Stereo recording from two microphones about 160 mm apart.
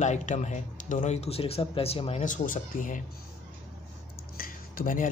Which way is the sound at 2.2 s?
55° left (ahead or behind).